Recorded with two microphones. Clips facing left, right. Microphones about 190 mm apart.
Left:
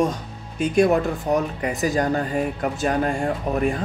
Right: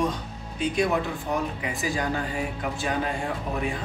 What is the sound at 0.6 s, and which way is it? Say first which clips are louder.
Speech: left 7 dB; 45° left (ahead or behind).